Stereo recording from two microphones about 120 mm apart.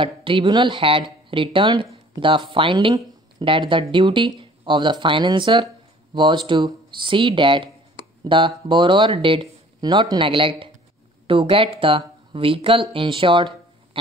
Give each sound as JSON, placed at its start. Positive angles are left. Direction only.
{"t": 0.0, "sound": "speech", "side_deg": -45}